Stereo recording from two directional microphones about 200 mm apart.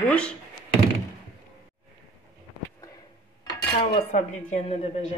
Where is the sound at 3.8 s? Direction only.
30° left (ahead or behind).